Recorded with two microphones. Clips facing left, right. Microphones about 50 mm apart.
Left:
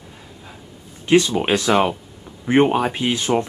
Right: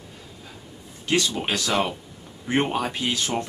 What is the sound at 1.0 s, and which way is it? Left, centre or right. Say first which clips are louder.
Speech: left 8 dB; left.